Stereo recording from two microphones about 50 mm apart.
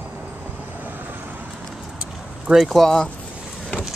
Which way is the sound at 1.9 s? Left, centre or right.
Centre.